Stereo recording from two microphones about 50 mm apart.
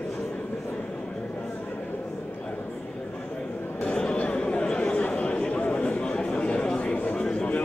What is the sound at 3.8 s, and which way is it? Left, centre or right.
Chatter, left.